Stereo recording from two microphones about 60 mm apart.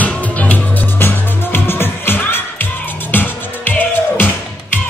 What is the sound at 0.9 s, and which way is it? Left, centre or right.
Music, left.